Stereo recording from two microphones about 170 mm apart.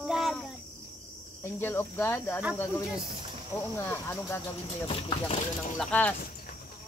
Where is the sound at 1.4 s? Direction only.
10° left (ahead or behind).